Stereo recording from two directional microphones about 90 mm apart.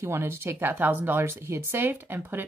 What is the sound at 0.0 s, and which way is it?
Speech, 30° right (ahead or behind).